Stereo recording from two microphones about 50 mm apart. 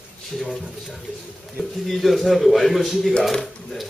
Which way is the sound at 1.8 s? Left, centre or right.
Centre.